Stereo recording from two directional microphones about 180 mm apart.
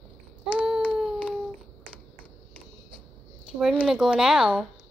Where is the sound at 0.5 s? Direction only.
5° right (ahead or behind).